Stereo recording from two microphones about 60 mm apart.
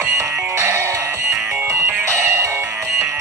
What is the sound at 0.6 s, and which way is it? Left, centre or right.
Music, right.